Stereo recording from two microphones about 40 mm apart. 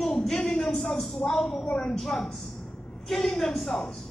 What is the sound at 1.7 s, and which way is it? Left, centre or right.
A woman's voice, left.